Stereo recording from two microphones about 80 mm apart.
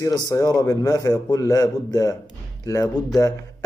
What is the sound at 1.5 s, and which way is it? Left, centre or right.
A man's voice, left.